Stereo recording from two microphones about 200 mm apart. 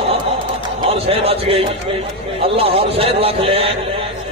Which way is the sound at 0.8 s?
30° right (ahead or behind).